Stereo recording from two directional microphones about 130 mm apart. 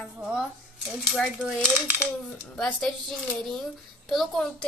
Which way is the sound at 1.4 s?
15° right (ahead or behind).